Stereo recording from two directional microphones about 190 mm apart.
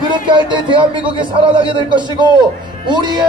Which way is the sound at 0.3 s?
25° right (ahead or behind).